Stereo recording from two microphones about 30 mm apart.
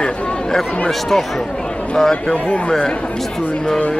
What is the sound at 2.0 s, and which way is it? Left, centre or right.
Speech, centre.